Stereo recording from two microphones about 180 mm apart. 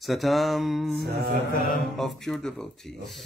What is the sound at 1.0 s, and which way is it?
Music, 65° right (ahead or behind).